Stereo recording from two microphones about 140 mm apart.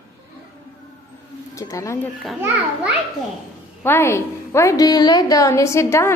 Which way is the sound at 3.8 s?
15° left (ahead or behind).